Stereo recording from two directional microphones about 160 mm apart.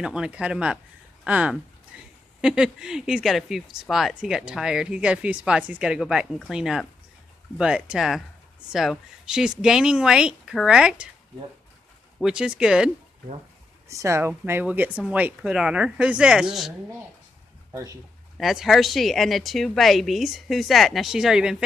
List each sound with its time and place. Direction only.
0.0 s speech: 5° right (ahead or behind)
12.2 s speech: 5° right (ahead or behind)
13.8 s speech: 20° right (ahead or behind); by 16.7 s 5° right (ahead or behind)
18.4 s speech: centre (ahead or behind)